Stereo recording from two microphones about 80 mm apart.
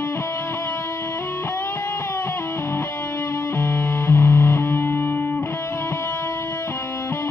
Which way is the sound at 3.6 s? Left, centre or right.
Left.